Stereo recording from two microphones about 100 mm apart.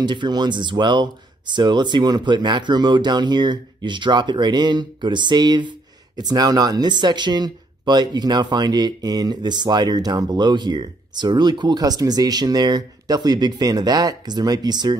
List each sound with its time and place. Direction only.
0.0 s speech: 50° right (ahead or behind)